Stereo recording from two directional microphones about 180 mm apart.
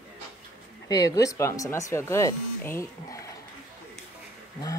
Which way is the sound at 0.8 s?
20° left (ahead or behind).